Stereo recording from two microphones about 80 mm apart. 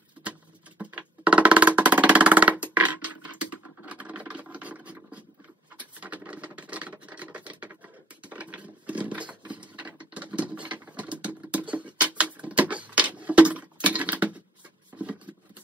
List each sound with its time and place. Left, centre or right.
0.2 s music: centre
3.8 s scratch: centre
5.9 s patter: centre